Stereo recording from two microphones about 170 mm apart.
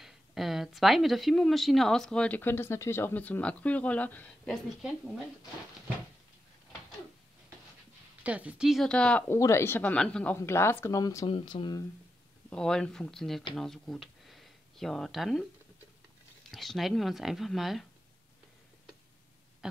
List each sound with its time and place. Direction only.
0.0 s speech: centre (ahead or behind)
8.2 s speech: 10° right (ahead or behind); by 11.2 s 20° left (ahead or behind)
11.2 s speech: 30° left (ahead or behind)
12.4 s speech: 5° left (ahead or behind)
16.4 s speech: centre (ahead or behind)
19.6 s a sound: 5° right (ahead or behind)